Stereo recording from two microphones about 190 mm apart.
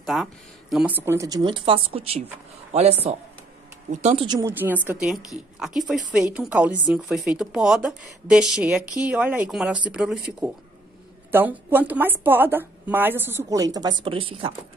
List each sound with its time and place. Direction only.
0.0 s a woman's voice: centre (ahead or behind); by 4.4 s 30° right (ahead or behind)
4.4 s a woman's voice: 10° right (ahead or behind)
11.3 s a woman's voice: 10° right (ahead or behind); by 14.5 s 30° right (ahead or behind)